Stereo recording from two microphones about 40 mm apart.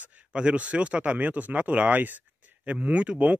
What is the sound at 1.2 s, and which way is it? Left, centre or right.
Speech, right.